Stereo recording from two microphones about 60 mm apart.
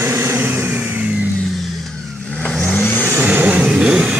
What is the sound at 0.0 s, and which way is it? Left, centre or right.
Vehicle, right.